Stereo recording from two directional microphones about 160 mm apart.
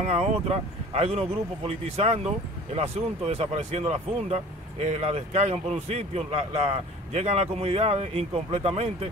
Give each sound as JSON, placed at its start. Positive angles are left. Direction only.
{"t": 0.0, "sound": "speech", "side_deg": -40}